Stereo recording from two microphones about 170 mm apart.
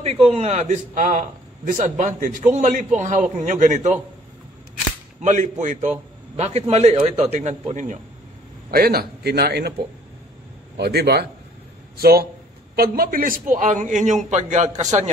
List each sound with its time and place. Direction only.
0.0 s a man's voice: 40° right (ahead or behind)
5.2 s a man's voice: 45° right (ahead or behind)
8.6 s a man's voice: 65° right (ahead or behind)
10.8 s a man's voice: 75° right (ahead or behind); by 15.0 s 45° right (ahead or behind)